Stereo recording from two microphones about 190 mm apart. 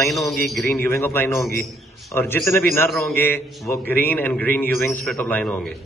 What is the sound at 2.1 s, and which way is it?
Speech, 10° left (ahead or behind).